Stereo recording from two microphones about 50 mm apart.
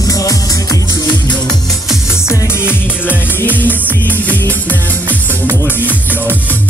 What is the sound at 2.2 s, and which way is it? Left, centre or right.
Music, left.